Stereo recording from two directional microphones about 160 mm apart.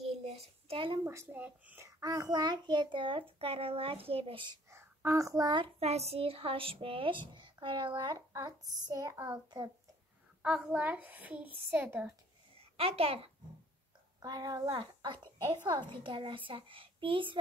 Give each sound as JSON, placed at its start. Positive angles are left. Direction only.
{"t": 0.0, "sound": "a sound", "side_deg": -40}
{"t": 1.0, "sound": "a child's voice", "side_deg": -15}
{"t": 1.9, "sound": "speech", "side_deg": -20}
{"t": 4.6, "sound": "speech", "side_deg": -15}
{"t": 10.4, "sound": "a child's voice", "side_deg": -5}
{"t": 12.5, "sound": "a child's voice", "side_deg": -35}
{"t": 14.2, "sound": "speech", "side_deg": -25}